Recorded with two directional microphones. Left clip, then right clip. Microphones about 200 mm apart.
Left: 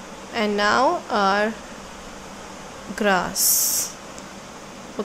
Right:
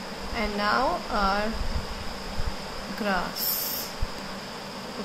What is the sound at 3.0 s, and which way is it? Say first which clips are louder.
Speech: left 8 dB; 55° left (ahead or behind).